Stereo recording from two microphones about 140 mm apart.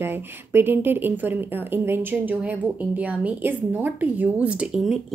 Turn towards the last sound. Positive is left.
turn(degrees=-5)  # may be behind; listen again after turning